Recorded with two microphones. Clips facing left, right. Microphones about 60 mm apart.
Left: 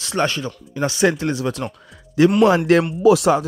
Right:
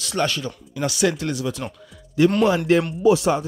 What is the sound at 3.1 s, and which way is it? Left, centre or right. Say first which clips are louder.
Speech: left 4 dB; left.